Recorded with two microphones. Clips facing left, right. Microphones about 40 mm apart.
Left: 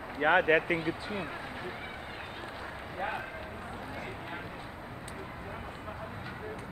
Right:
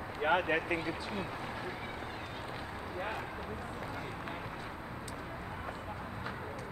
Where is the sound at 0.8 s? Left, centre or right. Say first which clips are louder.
Left 3 dB; left.